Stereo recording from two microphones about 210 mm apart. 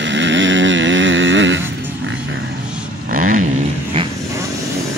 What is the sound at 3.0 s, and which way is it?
Vehicle, 40° right (ahead or behind).